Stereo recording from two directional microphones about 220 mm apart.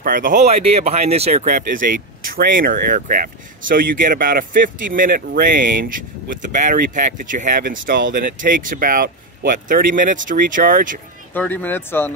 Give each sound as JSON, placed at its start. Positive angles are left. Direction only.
{"t": 0.0, "sound": "speech", "side_deg": -40}
{"t": 11.3, "sound": "speech", "side_deg": 10}